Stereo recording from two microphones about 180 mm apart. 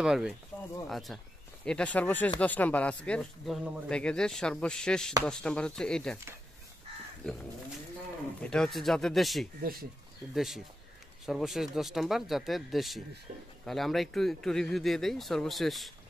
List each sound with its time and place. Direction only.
0.0 s speech: 5° right (ahead or behind)
8.4 s speech: 5° left (ahead or behind)
9.6 s speech: 55° right (ahead or behind)
10.3 s speech: centre (ahead or behind)
13.3 s speech: 40° right (ahead or behind)
13.7 s speech: centre (ahead or behind)